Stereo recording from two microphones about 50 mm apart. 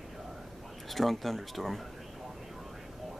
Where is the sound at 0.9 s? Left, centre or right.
Centre.